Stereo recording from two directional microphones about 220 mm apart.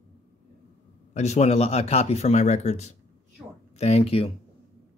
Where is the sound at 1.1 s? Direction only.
30° left (ahead or behind).